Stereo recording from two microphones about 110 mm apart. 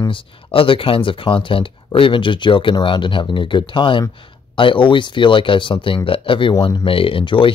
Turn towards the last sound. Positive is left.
turn(degrees=50)  # may be behind; listen again after turning